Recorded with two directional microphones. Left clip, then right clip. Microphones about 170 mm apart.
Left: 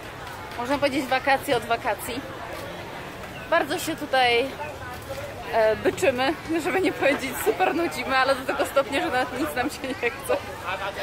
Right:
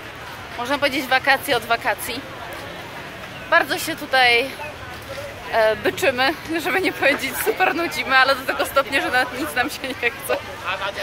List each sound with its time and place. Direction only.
0.7 s speech: 15° left (ahead or behind)
3.4 s speech: 15° left (ahead or behind)
5.5 s speech: 15° left (ahead or behind)